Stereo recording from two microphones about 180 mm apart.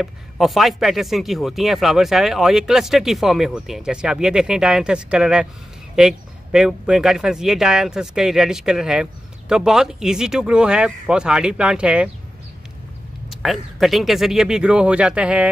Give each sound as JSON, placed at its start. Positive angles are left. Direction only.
{"t": 0.0, "sound": "speech", "side_deg": 0}
{"t": 13.3, "sound": "speech", "side_deg": 0}